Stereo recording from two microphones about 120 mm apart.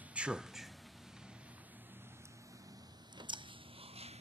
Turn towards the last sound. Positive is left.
turn(degrees=-40)  # may be behind; listen again after turning